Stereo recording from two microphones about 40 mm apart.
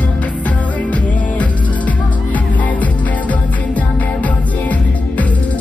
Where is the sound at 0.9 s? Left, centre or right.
Left.